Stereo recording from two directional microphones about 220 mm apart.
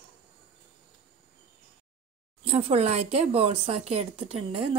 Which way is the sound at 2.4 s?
30° right (ahead or behind).